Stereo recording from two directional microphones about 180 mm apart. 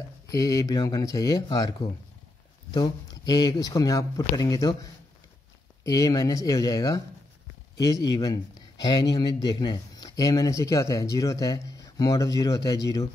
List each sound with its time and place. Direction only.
0.3 s speech: 20° left (ahead or behind)
5.9 s speech: 20° left (ahead or behind)